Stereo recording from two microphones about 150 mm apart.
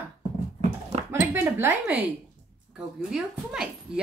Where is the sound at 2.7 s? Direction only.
5° right (ahead or behind).